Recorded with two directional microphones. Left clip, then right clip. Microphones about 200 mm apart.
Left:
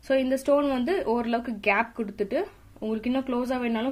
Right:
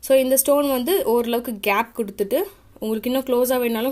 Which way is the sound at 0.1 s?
35° right (ahead or behind).